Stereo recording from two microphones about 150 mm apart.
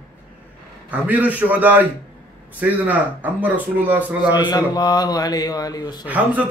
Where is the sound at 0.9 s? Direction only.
10° right (ahead or behind).